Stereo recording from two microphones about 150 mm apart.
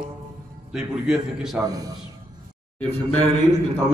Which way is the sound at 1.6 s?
25° right (ahead or behind).